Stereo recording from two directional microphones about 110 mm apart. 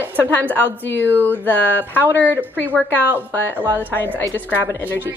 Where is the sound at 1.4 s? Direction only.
15° left (ahead or behind).